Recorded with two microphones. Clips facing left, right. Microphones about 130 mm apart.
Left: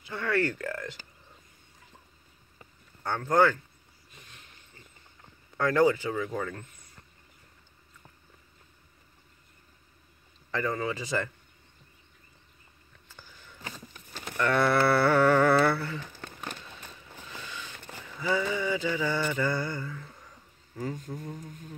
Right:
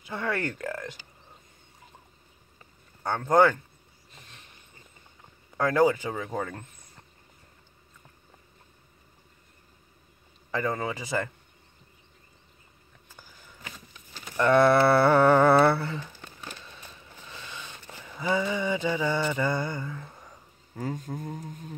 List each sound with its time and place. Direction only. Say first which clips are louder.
0.1 s mantra: left 2 dB; 20° right (ahead or behind)
3.2 s speech: right 3 dB; 20° right (ahead or behind)
5.6 s speech: right 1 dB; 15° right (ahead or behind)
6.0 s mantra: even; 25° right (ahead or behind)
10.5 s speech: right 1 dB; 20° right (ahead or behind)
14.3 s dog: right 5 dB; 20° right (ahead or behind)
18.2 s mantra: right 2 dB; 20° right (ahead or behind)
20.8 s speech: right 2 dB; 50° right (ahead or behind)